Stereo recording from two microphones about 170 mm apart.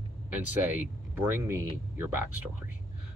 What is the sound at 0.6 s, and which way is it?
Speech, 10° right (ahead or behind).